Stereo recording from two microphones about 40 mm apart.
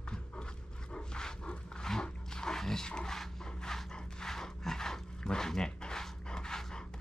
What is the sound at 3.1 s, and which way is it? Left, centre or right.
Wood, centre.